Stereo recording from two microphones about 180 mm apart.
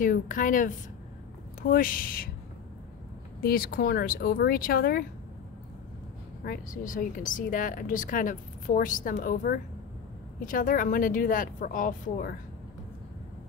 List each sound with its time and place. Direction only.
0.0 s speech: 45° left (ahead or behind)
3.3 s speech: 55° left (ahead or behind)
6.4 s speech: 50° left (ahead or behind)